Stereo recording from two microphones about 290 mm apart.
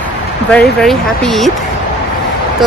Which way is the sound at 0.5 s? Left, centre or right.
Centre.